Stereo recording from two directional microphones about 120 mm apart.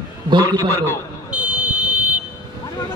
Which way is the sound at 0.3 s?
40° right (ahead or behind).